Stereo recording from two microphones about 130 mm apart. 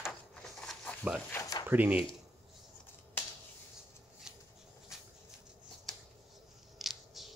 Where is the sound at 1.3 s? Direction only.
25° left (ahead or behind).